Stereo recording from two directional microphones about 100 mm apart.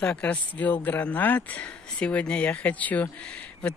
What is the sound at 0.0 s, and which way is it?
Speech, 15° left (ahead or behind).